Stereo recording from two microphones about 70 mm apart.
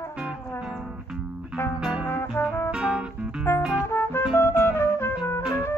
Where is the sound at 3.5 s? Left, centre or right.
Left.